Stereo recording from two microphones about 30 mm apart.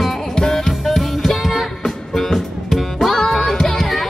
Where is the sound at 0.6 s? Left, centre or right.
Centre.